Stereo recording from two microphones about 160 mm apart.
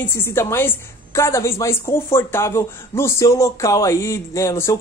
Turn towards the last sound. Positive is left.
turn(degrees=15)  # may be behind; listen again after turning